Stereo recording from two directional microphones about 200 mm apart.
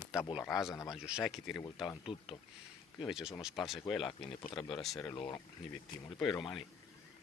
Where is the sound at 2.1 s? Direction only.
25° left (ahead or behind).